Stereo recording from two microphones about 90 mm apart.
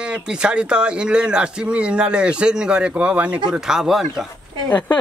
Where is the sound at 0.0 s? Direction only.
10° right (ahead or behind).